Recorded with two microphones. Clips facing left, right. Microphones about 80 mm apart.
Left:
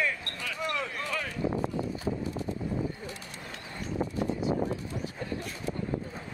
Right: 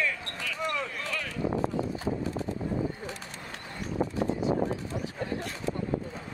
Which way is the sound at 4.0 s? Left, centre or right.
Right.